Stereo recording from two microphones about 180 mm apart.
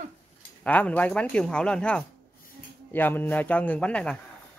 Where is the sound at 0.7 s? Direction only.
10° left (ahead or behind).